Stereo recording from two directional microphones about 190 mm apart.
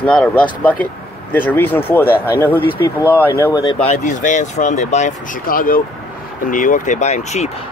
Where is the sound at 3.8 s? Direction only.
35° left (ahead or behind).